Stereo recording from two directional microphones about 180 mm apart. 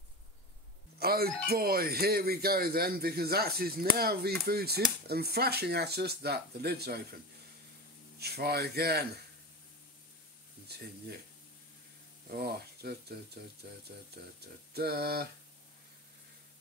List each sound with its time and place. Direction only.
0.9 s speech: 60° right (ahead or behind)
8.2 s speech: 65° right (ahead or behind)
12.3 s speech: 60° right (ahead or behind)